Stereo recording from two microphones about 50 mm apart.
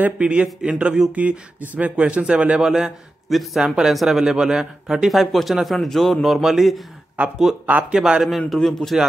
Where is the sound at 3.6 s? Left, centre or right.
Centre.